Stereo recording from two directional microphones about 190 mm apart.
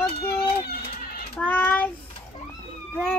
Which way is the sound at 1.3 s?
10° left (ahead or behind).